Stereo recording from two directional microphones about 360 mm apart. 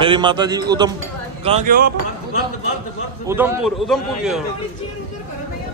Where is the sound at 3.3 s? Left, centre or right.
Centre.